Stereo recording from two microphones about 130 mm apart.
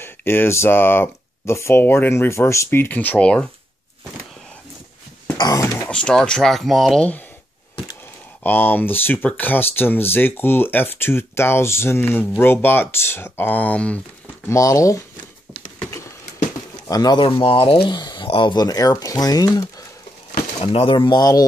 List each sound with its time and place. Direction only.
0.0 s speech: 15° left (ahead or behind)
5.4 s a sound: 25° left (ahead or behind)
5.9 s speech: 5° left (ahead or behind)
8.5 s speech: 15° left (ahead or behind)
14.5 s speech: 25° left (ahead or behind)
16.9 s speech: 30° left (ahead or behind)
20.7 s speech: 40° left (ahead or behind)